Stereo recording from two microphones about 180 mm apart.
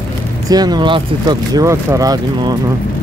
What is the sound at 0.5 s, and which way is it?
Speech, 20° right (ahead or behind).